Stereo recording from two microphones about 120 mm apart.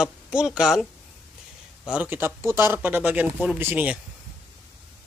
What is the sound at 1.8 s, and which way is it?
Speech, 10° right (ahead or behind).